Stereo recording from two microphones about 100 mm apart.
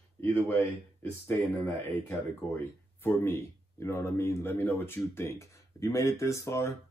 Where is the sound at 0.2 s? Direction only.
25° left (ahead or behind).